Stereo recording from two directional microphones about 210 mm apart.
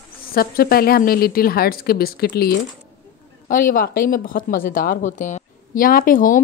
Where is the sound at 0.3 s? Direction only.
45° left (ahead or behind).